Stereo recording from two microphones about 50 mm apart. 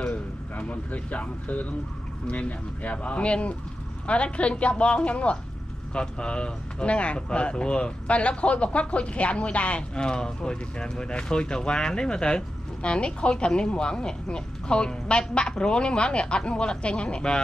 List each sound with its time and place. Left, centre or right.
0.0 s speech: left